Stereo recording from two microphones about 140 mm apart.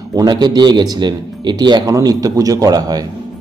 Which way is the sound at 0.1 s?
30° right (ahead or behind).